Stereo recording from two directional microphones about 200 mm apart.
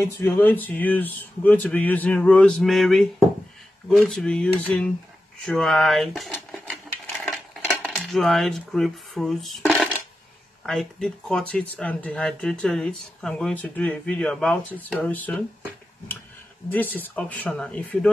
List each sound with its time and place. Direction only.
0.0 s speech: 10° left (ahead or behind)
5.4 s a sound: 5° left (ahead or behind)
7.9 s speech: centre (ahead or behind)
16.6 s speech: 10° left (ahead or behind)